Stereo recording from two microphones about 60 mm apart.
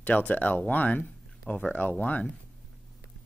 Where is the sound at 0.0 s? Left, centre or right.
Left.